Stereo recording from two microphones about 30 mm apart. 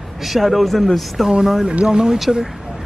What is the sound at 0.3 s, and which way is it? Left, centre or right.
Speech, centre.